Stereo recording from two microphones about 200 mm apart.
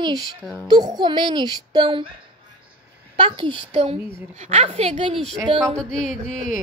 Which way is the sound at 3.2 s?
25° right (ahead or behind).